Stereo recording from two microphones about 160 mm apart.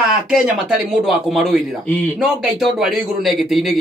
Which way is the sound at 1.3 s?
Centre (ahead or behind).